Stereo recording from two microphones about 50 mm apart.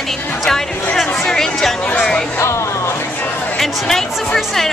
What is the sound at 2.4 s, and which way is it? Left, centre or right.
Speech, left.